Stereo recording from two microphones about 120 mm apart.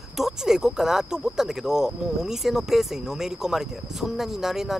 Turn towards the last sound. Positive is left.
turn(degrees=-5)  # may be behind; listen again after turning